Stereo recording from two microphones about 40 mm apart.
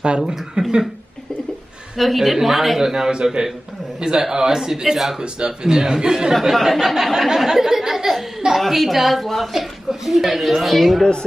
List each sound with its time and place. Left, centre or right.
0.2 s a man's voice: centre
2.0 s a woman's voice: centre
2.8 s a man's voice: centre
5.2 s speech: right
6.5 s a woman's voice: centre